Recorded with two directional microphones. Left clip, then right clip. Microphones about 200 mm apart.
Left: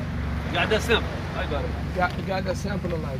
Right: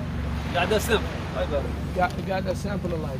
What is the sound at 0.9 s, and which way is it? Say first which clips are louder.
Speech: left 2 dB; 60° right (ahead or behind).